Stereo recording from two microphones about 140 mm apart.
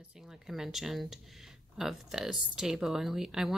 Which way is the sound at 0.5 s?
Centre (ahead or behind).